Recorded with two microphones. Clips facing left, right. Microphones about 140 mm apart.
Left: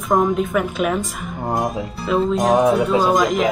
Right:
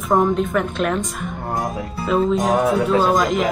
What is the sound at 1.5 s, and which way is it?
Speech, 20° left (ahead or behind).